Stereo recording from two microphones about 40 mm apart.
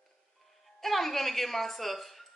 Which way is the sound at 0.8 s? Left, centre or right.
Centre.